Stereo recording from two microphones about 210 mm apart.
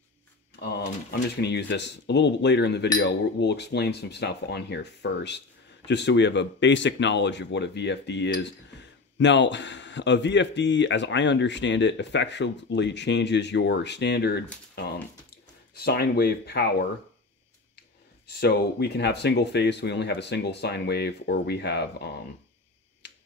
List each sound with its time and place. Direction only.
1.4 s speech: 55° left (ahead or behind)
18.2 s speech: 50° left (ahead or behind)